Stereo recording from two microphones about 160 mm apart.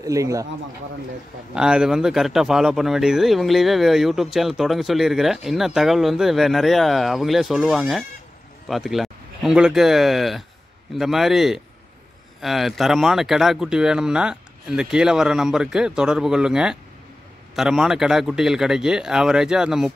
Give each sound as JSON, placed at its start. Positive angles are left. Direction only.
{"t": 0.0, "sound": "a man's voice", "side_deg": -20}
{"t": 1.5, "sound": "speech", "side_deg": -5}